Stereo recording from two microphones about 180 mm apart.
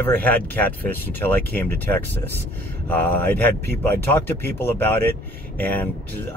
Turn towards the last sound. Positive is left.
turn(degrees=10)  # may be behind; listen again after turning